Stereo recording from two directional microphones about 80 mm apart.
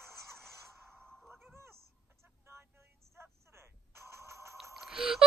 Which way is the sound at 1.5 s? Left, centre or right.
Right.